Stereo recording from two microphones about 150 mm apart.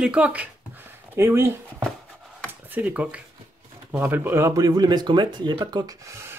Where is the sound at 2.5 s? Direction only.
10° right (ahead or behind).